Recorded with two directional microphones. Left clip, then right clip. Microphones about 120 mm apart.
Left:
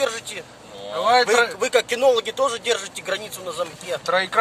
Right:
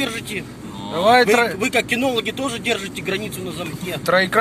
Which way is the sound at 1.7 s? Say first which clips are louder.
Left 4 dB; 45° left (ahead or behind).